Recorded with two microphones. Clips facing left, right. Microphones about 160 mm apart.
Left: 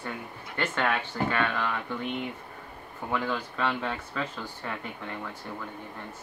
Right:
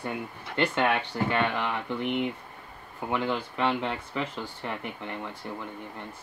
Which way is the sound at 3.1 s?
20° right (ahead or behind).